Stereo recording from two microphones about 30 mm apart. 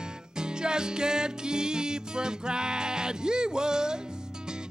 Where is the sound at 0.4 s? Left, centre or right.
Right.